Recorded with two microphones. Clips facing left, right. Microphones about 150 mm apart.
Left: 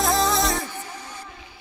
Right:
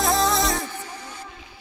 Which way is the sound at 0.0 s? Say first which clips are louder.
Even; centre (ahead or behind).